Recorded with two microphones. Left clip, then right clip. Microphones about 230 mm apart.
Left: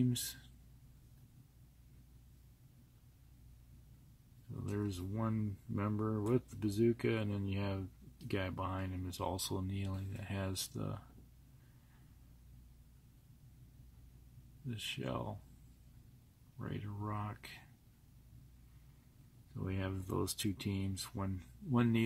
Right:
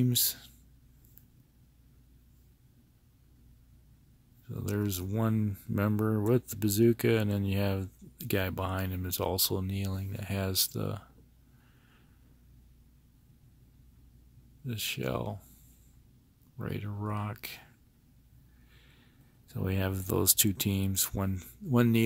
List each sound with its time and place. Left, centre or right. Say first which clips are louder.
0.0 s speech: right 8 dB; right
4.6 s speech: right 7 dB; right
14.7 s speech: right 8 dB; right
16.5 s speech: right 7 dB; right
19.5 s speech: right 9 dB; right